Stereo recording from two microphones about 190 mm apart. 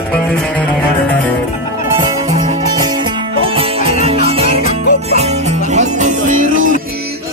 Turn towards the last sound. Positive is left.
turn(degrees=-45)  # may be behind; listen again after turning